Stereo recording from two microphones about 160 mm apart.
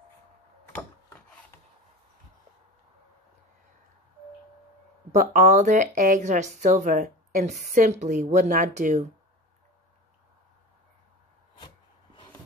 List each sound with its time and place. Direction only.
5.1 s speech: 55° right (ahead or behind)